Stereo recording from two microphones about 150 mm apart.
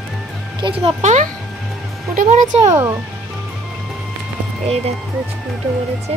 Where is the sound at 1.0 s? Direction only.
50° right (ahead or behind).